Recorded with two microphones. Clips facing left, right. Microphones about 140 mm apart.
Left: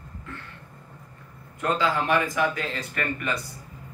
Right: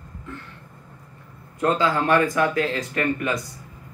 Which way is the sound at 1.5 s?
40° right (ahead or behind).